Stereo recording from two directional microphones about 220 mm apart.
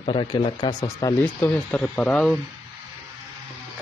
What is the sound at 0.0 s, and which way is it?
Speech, 20° left (ahead or behind).